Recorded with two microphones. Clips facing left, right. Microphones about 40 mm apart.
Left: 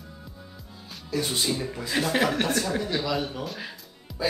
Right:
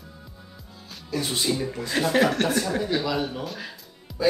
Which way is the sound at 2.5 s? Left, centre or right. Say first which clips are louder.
Right 2 dB; centre.